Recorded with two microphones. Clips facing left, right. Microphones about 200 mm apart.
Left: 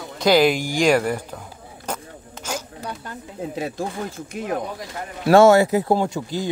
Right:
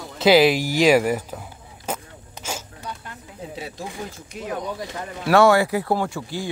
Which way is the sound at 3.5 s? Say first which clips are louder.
Left 6 dB; 50° left (ahead or behind).